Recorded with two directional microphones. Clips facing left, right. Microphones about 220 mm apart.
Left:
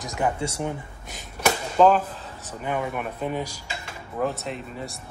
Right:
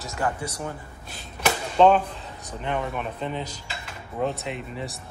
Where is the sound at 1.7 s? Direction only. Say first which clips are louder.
Right 1 dB; 5° left (ahead or behind).